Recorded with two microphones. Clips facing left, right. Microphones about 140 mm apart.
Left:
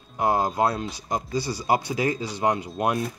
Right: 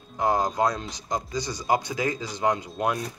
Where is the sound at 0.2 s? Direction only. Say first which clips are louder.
Left 1 dB; 10° left (ahead or behind).